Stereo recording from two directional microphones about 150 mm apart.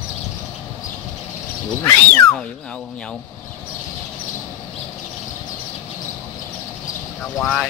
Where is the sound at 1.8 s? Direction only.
10° left (ahead or behind).